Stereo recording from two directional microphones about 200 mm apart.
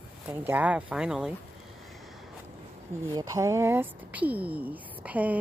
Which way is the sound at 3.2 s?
15° right (ahead or behind).